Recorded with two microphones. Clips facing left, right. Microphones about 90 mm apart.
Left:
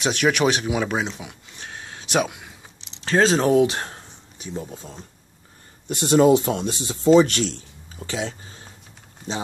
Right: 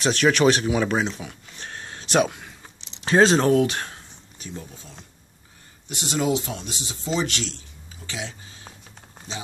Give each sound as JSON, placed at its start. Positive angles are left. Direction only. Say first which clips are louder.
{"t": 0.0, "sound": "speech", "louder": "right 1 dB", "side_deg": 15}
{"t": 1.6, "sound": "a sound", "louder": "even", "side_deg": 5}
{"t": 3.1, "sound": "speech", "louder": "right 2 dB", "side_deg": -5}
{"t": 3.3, "sound": "speech", "louder": "left 1 dB", "side_deg": 10}
{"t": 3.6, "sound": "speech", "louder": "left 3 dB", "side_deg": 30}
{"t": 5.9, "sound": "speech", "louder": "left 9 dB", "side_deg": 45}